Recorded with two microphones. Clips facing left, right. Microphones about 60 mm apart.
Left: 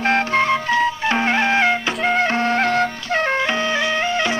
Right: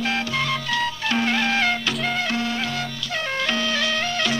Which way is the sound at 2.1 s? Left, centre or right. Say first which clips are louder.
Left 7 dB; left.